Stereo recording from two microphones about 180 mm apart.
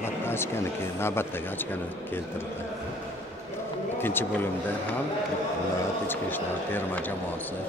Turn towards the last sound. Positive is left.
turn(degrees=10)  # may be behind; listen again after turning